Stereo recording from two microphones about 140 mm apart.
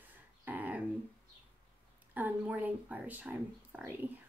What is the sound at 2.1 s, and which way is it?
Speech, 10° right (ahead or behind).